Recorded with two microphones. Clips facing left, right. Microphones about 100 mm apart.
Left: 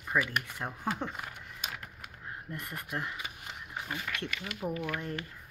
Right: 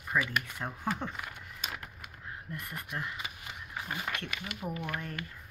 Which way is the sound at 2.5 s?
25° left (ahead or behind).